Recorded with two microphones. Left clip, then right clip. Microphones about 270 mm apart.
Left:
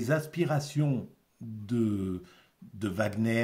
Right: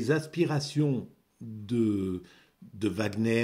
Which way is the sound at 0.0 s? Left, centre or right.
Centre.